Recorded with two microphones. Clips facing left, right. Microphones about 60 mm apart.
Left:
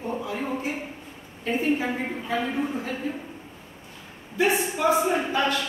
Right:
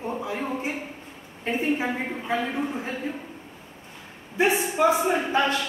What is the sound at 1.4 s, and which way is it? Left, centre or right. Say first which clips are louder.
Speech: left 1 dB; right.